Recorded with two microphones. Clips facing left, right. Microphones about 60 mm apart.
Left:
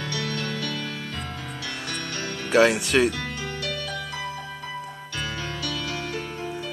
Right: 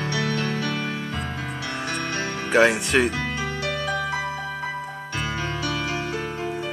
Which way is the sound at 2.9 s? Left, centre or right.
Centre.